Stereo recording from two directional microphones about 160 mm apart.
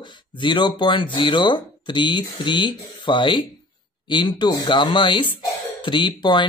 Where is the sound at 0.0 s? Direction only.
30° left (ahead or behind).